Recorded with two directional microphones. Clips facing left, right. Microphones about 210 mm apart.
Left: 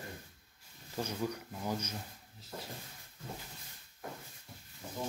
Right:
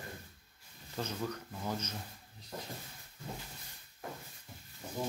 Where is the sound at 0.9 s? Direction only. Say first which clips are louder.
Left 1 dB; 10° left (ahead or behind).